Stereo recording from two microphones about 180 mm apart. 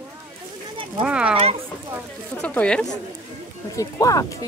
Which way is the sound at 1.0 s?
5° right (ahead or behind).